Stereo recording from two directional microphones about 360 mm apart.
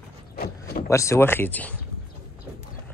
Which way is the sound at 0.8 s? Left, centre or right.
Centre.